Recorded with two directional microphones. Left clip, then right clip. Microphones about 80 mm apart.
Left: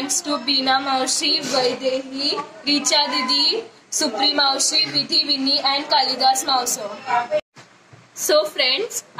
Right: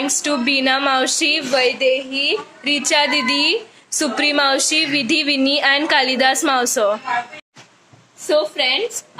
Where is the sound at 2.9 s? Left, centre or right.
Right.